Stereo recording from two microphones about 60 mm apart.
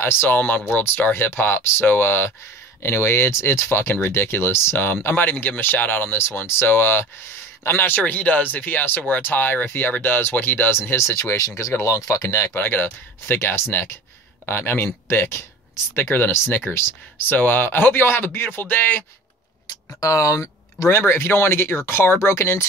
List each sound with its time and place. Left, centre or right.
0.0 s speech: left
7.9 s speech: left
10.8 s speech: left
12.5 s a man's voice: left
15.0 s a sound: left
15.9 s speech: left
17.3 s speech: left
20.0 s speech: left
21.0 s speech: left